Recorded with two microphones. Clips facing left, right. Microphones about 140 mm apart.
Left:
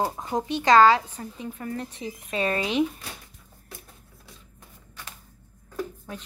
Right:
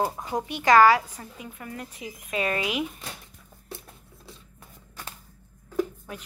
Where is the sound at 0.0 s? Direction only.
20° left (ahead or behind).